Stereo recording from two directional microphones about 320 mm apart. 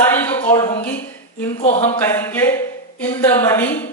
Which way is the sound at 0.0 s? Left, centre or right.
Centre.